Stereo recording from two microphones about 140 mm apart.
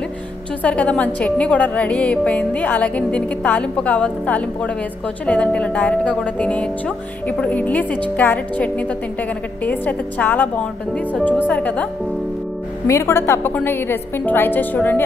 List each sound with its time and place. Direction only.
0.6 s a woman's voice: 10° left (ahead or behind)